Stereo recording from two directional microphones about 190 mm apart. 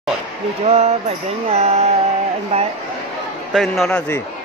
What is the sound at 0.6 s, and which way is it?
Speech, 35° right (ahead or behind).